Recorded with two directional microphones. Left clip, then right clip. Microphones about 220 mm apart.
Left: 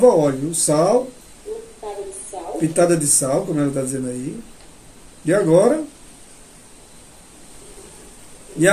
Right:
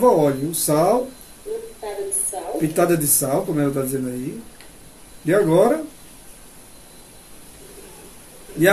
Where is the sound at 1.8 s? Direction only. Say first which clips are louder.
Left 1 dB; 30° right (ahead or behind).